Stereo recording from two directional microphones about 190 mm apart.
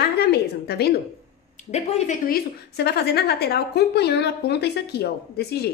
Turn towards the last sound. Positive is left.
turn(degrees=55)  # may be behind; listen again after turning